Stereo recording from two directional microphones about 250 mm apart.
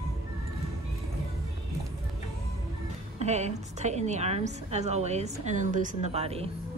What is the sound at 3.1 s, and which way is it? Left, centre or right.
A woman's voice, right.